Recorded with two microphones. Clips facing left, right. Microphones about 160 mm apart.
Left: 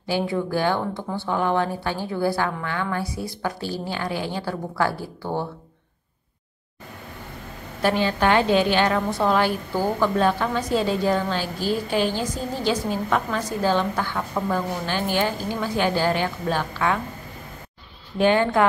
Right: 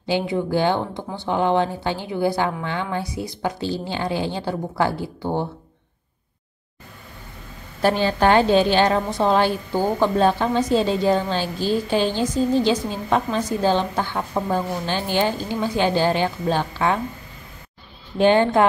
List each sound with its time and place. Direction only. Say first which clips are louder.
0.0 s a woman's voice: right 2 dB; 20° right (ahead or behind)
7.8 s a woman's voice: right 3 dB; 35° right (ahead or behind)
18.1 s a woman's voice: right 3 dB; 25° right (ahead or behind)